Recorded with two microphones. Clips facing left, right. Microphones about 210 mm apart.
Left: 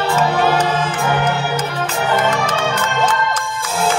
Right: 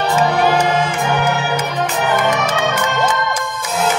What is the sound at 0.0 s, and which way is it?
Music, 15° right (ahead or behind).